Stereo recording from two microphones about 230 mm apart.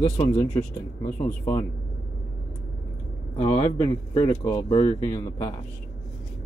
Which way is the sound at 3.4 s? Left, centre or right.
Left.